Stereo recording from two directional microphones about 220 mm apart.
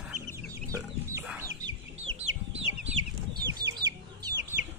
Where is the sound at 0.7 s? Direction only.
10° right (ahead or behind).